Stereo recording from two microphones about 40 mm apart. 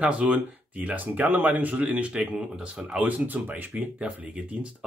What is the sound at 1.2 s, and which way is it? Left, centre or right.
Speech, right.